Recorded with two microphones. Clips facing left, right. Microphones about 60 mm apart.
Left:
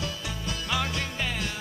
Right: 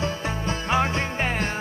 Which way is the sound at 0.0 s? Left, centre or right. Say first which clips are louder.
Right 7 dB; right.